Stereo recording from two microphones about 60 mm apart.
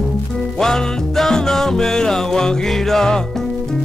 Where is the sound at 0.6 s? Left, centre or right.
Centre.